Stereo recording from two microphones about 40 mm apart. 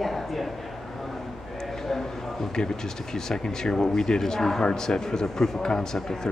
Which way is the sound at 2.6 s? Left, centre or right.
Centre.